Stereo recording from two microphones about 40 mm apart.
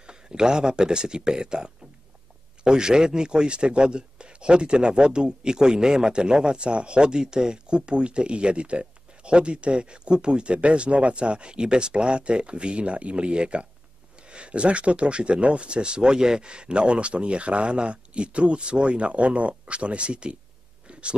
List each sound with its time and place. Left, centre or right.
0.0 s a man's voice: centre